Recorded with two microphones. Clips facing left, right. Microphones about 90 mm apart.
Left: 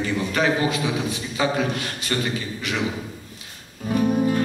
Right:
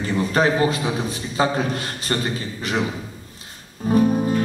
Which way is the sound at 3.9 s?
35° right (ahead or behind).